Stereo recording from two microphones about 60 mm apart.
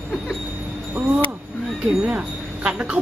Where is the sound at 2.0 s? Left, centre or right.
Right.